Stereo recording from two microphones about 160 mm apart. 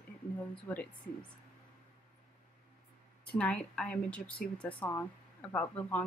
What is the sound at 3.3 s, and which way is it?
Speech, 5° left (ahead or behind).